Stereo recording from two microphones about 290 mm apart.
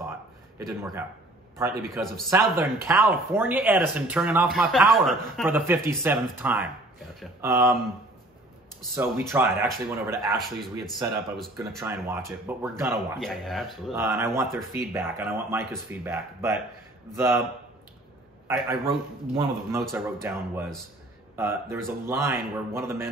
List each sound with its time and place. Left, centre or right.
0.6 s speech: centre
1.9 s speech: centre
8.9 s speech: centre
18.5 s speech: centre
19.3 s speech: centre